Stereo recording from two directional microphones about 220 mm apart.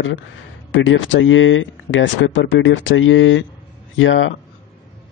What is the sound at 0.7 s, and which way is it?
Speech, 55° left (ahead or behind).